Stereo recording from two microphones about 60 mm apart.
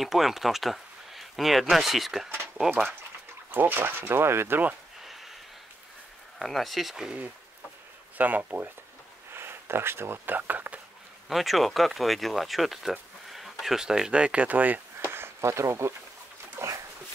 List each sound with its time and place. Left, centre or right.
0.0 s speech: centre
3.5 s speech: right
5.0 s a sound: centre
6.4 s speech: centre
8.2 s speech: right
9.3 s speech: right
11.2 s speech: centre; by 15.9 s right
16.6 s dog: right